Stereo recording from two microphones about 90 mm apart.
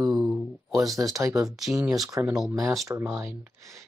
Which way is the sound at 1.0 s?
40° right (ahead or behind).